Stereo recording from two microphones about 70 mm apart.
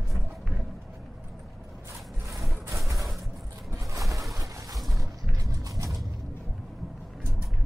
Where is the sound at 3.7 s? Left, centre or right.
Right.